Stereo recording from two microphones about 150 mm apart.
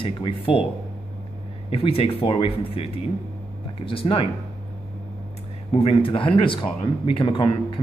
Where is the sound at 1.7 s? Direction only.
40° left (ahead or behind).